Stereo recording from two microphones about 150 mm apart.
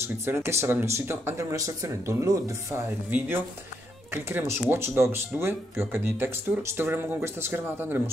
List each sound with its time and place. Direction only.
0.0 s speech: 15° right (ahead or behind)
3.1 s speech: 10° right (ahead or behind)